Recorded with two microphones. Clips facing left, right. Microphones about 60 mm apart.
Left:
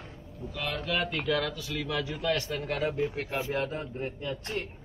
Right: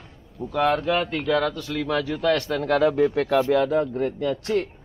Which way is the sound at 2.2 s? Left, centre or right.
Right.